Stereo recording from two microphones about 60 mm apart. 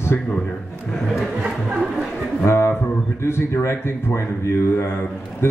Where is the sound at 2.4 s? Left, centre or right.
Left.